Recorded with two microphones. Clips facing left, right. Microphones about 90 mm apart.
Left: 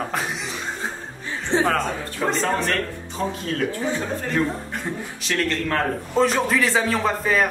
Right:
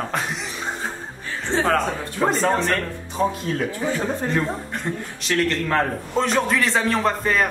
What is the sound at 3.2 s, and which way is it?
Speech, 10° right (ahead or behind).